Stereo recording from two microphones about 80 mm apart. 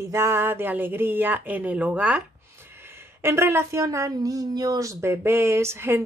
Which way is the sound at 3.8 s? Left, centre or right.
Right.